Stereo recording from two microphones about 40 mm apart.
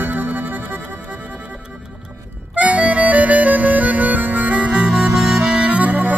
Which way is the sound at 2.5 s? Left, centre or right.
Right.